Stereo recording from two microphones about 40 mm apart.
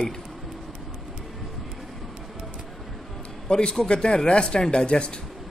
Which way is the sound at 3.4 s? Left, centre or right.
Left.